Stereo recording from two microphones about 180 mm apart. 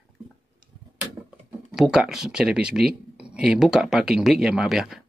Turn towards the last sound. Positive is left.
turn(degrees=0)  # may be behind; listen again after turning